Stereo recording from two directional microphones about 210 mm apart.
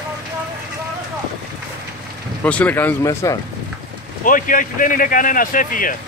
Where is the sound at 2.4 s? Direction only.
5° left (ahead or behind).